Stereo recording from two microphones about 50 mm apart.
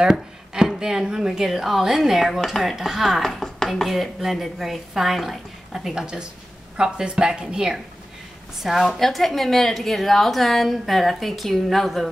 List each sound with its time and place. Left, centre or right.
0.0 s a woman's voice: centre
3.9 s a woman's voice: centre
8.8 s a woman's voice: centre